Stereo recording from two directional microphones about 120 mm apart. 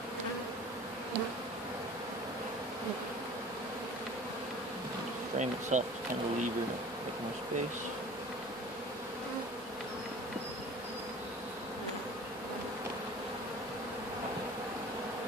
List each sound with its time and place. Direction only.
5.4 s bee: 90° right